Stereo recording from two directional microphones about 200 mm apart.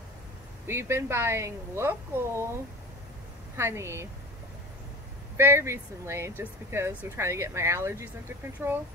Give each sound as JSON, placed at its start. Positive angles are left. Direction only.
{"t": 0.7, "sound": "speech", "side_deg": -10}
{"t": 3.5, "sound": "speech", "side_deg": -15}
{"t": 5.4, "sound": "speech", "side_deg": -15}